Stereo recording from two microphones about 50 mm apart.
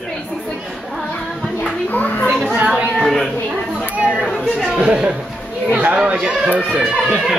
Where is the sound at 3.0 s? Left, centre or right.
Centre.